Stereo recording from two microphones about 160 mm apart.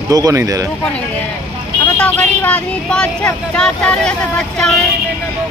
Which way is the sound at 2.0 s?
10° left (ahead or behind).